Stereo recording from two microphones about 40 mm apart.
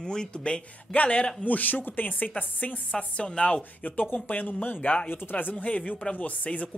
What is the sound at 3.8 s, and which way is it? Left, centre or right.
Speech, left.